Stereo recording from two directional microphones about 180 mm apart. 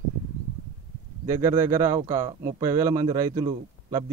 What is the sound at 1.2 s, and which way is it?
A man's voice, 15° right (ahead or behind).